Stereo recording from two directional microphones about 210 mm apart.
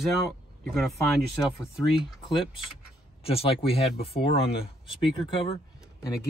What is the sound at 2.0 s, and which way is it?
Speech, 20° left (ahead or behind).